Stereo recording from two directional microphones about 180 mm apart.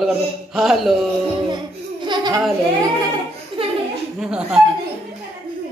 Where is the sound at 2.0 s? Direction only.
25° right (ahead or behind).